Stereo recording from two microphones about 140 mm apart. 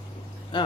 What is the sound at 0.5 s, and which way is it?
Speech, 35° left (ahead or behind).